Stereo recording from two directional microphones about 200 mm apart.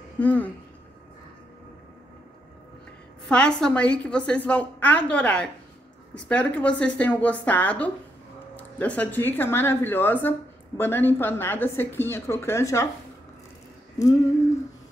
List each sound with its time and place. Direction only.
0.2 s a woman's voice: 10° left (ahead or behind)
3.3 s a woman's voice: 5° left (ahead or behind)
13.9 s a woman's voice: 15° left (ahead or behind)